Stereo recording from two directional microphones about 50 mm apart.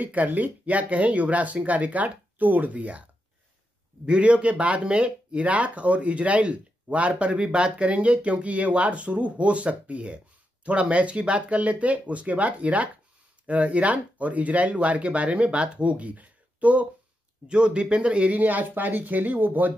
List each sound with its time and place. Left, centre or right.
0.0 s speech: right